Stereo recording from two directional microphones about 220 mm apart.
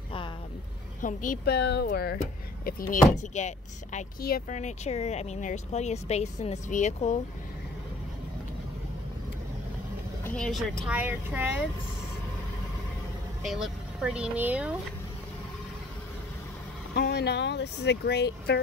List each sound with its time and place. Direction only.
1.0 s speech: 35° left (ahead or behind)
10.2 s speech: 5° left (ahead or behind)
13.5 s speech: centre (ahead or behind)
16.9 s speech: 50° left (ahead or behind)